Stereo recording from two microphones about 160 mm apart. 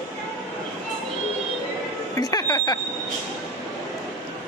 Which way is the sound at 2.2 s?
20° left (ahead or behind).